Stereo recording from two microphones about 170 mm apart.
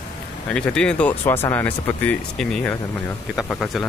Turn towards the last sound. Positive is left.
turn(degrees=5)  # may be behind; listen again after turning